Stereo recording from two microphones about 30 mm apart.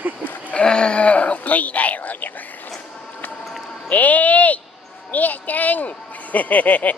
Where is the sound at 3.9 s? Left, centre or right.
Left.